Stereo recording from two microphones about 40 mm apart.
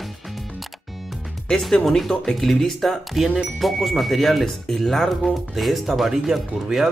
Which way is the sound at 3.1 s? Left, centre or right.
Centre.